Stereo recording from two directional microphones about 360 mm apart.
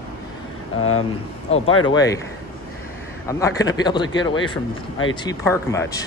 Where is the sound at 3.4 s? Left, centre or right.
Centre.